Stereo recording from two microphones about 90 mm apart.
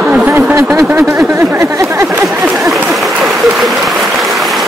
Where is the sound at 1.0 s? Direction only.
35° right (ahead or behind).